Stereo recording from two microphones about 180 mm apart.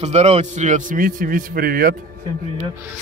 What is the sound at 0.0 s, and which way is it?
A man's voice, 35° right (ahead or behind).